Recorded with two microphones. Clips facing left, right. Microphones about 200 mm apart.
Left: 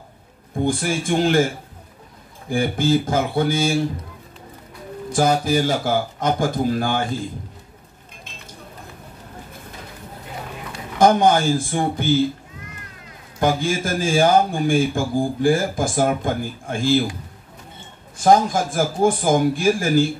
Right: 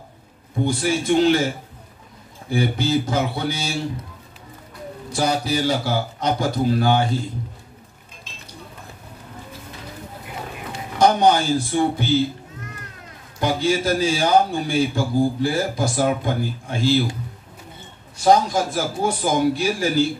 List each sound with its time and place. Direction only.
0.7 s a man's voice: 50° left (ahead or behind)
2.5 s a man's voice: 50° left (ahead or behind)
5.1 s a man's voice: 50° left (ahead or behind)
11.0 s a man's voice: 50° left (ahead or behind)
13.4 s a man's voice: 50° left (ahead or behind)
18.1 s a man's voice: 50° left (ahead or behind)